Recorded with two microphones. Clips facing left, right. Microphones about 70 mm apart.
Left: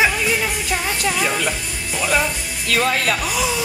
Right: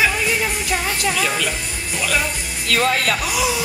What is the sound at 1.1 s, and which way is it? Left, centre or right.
Speech, centre.